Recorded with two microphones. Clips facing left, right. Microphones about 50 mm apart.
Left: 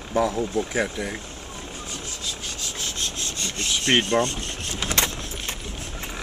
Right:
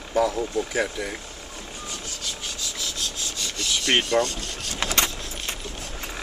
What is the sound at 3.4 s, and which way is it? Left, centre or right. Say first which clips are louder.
Rub: left 1 dB; left.